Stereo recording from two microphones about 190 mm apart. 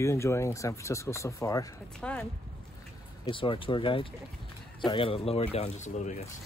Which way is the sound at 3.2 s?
25° left (ahead or behind).